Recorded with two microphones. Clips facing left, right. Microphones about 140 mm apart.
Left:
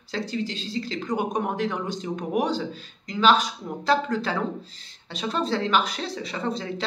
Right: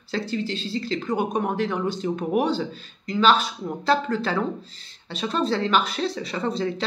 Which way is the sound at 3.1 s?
15° left (ahead or behind).